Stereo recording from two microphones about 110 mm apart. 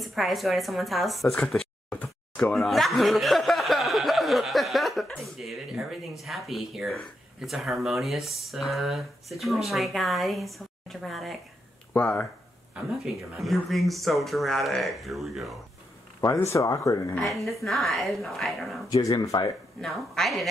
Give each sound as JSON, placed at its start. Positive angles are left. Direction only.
{"t": 0.0, "sound": "a woman's voice", "side_deg": 0}
{"t": 11.9, "sound": "speech", "side_deg": 15}
{"t": 12.7, "sound": "speech", "side_deg": 0}
{"t": 16.2, "sound": "speech", "side_deg": 30}
{"t": 17.3, "sound": "speech", "side_deg": 0}
{"t": 18.9, "sound": "speech", "side_deg": 35}
{"t": 19.8, "sound": "speech", "side_deg": 0}